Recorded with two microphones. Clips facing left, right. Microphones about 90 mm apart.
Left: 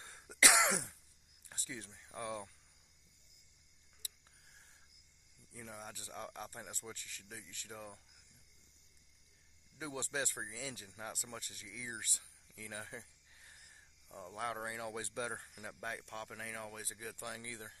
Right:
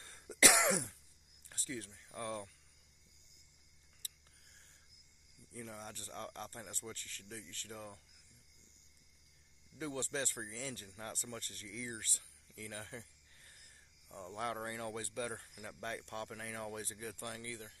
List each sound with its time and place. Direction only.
0.3 s throat clearing: centre (ahead or behind)
1.5 s speech: 15° left (ahead or behind)
5.5 s speech: 5° left (ahead or behind)
9.8 s speech: 10° left (ahead or behind)
14.0 s speech: centre (ahead or behind)
15.0 s speech: 20° left (ahead or behind)
15.6 s speech: 5° left (ahead or behind)
17.5 s speech: 30° left (ahead or behind)